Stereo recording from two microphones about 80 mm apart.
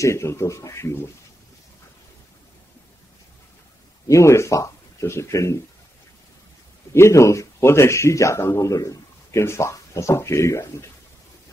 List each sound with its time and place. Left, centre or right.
0.0 s speech: left
4.1 s speech: left
6.9 s speech: left